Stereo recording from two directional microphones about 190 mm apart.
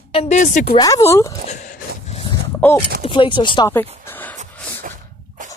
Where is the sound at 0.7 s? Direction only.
20° left (ahead or behind).